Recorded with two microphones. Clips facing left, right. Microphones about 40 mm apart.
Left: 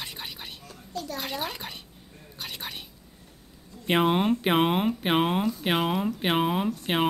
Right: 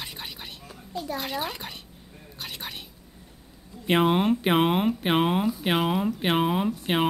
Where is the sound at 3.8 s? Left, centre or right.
Centre.